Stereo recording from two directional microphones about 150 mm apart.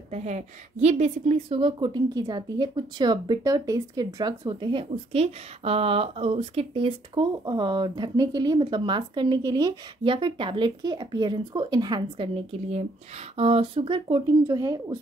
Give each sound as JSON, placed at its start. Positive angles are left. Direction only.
{"t": 0.1, "sound": "a woman's voice", "side_deg": -45}